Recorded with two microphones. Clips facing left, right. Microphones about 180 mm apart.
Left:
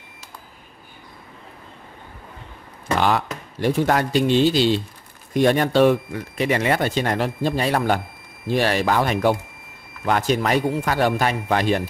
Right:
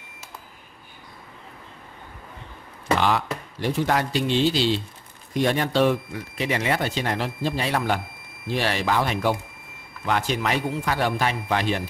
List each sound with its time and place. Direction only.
3.0 s speech: 50° left (ahead or behind)